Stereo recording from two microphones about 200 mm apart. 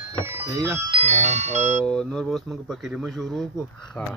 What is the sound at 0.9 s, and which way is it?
Speech, 35° right (ahead or behind).